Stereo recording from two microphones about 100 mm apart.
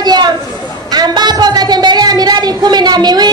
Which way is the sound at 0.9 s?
45° right (ahead or behind).